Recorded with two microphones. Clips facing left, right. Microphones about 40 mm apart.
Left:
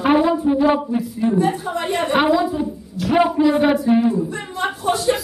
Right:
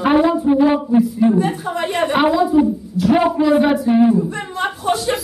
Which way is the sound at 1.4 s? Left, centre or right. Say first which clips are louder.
Even; right.